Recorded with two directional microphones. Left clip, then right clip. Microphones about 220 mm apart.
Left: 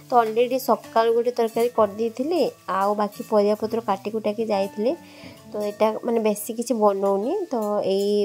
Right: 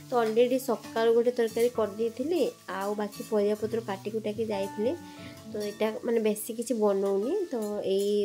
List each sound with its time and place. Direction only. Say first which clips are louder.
0.1 s speech: left 5 dB; 25° left (ahead or behind)